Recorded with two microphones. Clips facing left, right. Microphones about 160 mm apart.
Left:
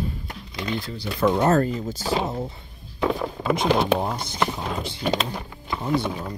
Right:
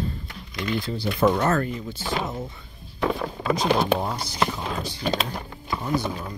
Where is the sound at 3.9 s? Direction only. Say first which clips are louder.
Left 1 dB; 20° left (ahead or behind).